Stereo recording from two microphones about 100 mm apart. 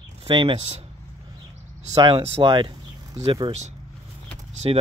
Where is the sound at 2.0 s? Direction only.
60° right (ahead or behind).